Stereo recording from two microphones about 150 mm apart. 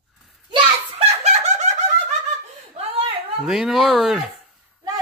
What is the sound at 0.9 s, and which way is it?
Snicker, 45° right (ahead or behind).